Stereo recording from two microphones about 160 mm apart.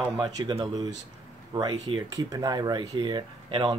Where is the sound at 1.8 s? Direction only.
35° right (ahead or behind).